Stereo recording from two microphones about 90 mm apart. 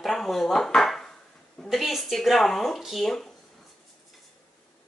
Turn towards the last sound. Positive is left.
turn(degrees=5)  # may be behind; listen again after turning